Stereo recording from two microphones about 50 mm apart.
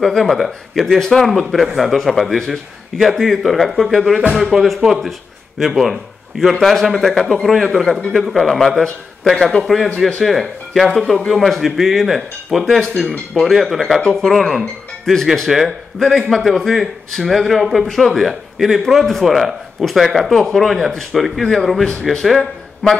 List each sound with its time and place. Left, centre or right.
0.0 s a man's voice: centre